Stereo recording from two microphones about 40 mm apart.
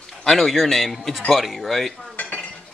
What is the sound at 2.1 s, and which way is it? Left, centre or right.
Dishes, left.